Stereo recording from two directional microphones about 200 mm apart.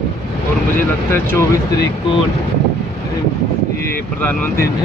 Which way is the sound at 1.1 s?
10° left (ahead or behind).